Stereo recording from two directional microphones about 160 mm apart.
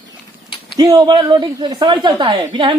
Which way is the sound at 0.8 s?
25° right (ahead or behind).